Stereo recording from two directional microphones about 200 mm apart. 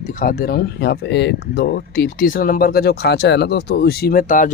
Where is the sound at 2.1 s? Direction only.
45° left (ahead or behind).